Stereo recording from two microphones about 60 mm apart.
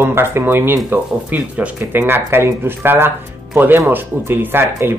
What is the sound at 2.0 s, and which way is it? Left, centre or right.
Speech, right.